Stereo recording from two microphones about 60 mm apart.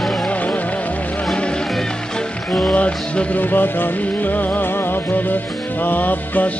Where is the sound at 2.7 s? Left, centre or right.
Centre.